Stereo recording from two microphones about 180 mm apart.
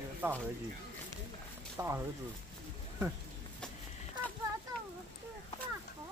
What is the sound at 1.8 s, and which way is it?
Speech, 20° right (ahead or behind).